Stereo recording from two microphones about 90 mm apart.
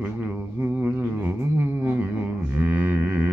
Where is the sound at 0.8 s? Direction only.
20° right (ahead or behind).